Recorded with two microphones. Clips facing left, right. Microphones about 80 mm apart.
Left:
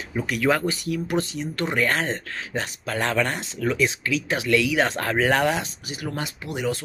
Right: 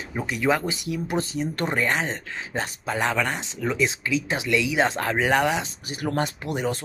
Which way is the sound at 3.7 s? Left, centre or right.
Centre.